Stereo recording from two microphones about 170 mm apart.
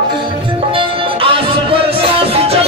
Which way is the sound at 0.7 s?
30° right (ahead or behind).